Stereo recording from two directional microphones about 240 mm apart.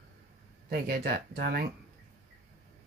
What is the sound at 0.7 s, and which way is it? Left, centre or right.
Speech, right.